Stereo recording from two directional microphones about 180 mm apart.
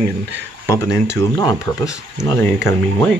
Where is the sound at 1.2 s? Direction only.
20° left (ahead or behind).